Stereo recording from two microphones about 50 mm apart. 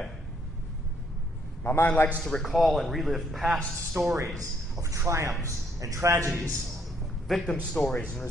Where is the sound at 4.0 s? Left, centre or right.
Right.